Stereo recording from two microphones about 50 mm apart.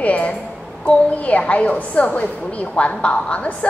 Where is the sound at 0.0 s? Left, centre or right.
Left.